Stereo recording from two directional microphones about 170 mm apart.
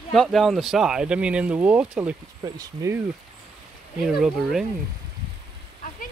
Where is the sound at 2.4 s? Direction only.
20° right (ahead or behind).